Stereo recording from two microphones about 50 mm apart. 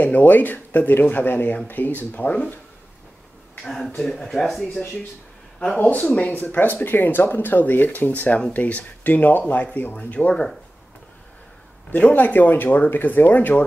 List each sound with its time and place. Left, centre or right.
0.0 s speech: left
3.6 s speech: centre
5.8 s speech: left
11.9 s speech: left